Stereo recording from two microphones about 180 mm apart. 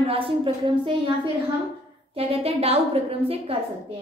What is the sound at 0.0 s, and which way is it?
A woman's voice, 30° right (ahead or behind).